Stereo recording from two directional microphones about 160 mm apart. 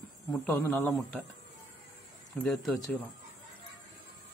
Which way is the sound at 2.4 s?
5° left (ahead or behind).